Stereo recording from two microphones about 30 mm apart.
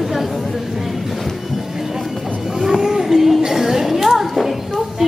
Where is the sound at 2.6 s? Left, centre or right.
Centre.